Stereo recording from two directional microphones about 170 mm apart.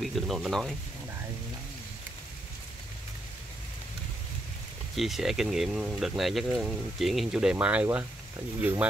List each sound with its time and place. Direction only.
0.0 s speech: centre (ahead or behind)
4.9 s speech: centre (ahead or behind)